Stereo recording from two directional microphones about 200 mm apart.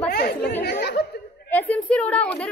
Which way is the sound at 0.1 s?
50° left (ahead or behind).